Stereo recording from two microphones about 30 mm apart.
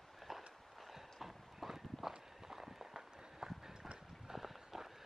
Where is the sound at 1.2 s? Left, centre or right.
Centre.